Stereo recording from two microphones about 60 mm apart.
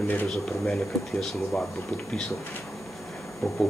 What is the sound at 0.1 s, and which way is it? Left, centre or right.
Speech, left.